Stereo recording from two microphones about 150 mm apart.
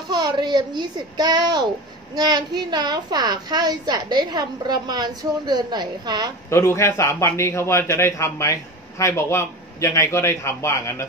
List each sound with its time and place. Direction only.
0.1 s a woman's voice: 30° right (ahead or behind)
6.5 s a man's voice: 20° left (ahead or behind)